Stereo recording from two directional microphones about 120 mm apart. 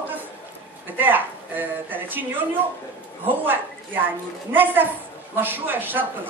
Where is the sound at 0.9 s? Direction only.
15° right (ahead or behind).